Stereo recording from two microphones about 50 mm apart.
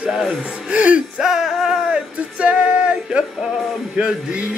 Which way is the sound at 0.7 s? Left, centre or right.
Right.